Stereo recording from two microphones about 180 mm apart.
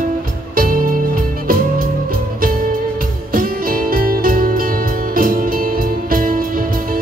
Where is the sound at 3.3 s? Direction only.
55° right (ahead or behind).